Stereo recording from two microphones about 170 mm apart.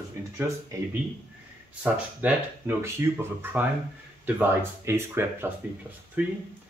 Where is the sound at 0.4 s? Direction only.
20° right (ahead or behind).